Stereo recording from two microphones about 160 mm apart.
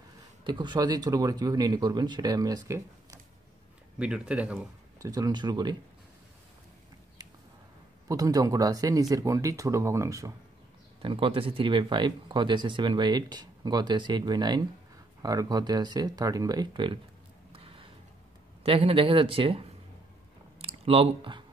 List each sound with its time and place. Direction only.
0.4 s speech: 30° right (ahead or behind)
4.0 s speech: 5° right (ahead or behind)
5.0 s speech: 25° right (ahead or behind)
8.1 s speech: 20° right (ahead or behind)
11.0 s speech: 35° right (ahead or behind)
18.6 s a man's voice: 35° right (ahead or behind)